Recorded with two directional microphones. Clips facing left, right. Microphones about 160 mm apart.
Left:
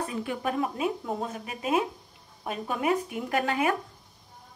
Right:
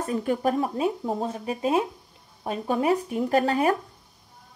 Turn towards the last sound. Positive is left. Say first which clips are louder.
# right 5 dB
turn(degrees=-35)  # may be behind; listen again after turning